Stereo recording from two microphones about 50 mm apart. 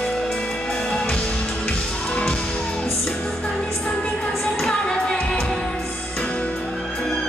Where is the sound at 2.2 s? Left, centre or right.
Centre.